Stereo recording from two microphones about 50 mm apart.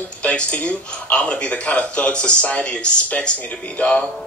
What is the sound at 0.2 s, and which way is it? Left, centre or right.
Speech, left.